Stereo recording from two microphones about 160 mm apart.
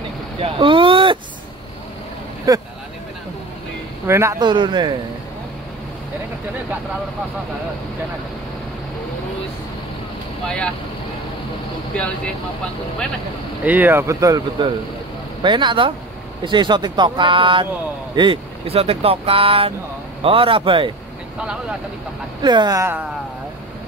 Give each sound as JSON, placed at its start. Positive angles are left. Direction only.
{"t": 0.4, "sound": "a sound", "side_deg": -30}
{"t": 2.5, "sound": "speech", "side_deg": -20}
{"t": 4.1, "sound": "speech", "side_deg": -20}
{"t": 13.7, "sound": "speech", "side_deg": -10}
{"t": 21.4, "sound": "speech", "side_deg": -5}
{"t": 22.4, "sound": "speech", "side_deg": -25}